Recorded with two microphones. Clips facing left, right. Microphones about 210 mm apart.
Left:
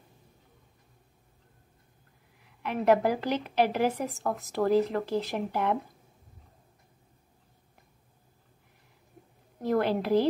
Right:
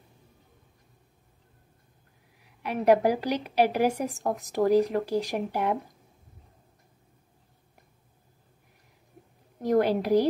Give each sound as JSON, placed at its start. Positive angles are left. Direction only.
{"t": 2.6, "sound": "a woman's voice", "side_deg": -15}
{"t": 9.6, "sound": "a woman's voice", "side_deg": -15}